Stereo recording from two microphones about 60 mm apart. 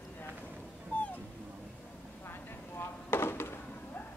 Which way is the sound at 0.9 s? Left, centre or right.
Left.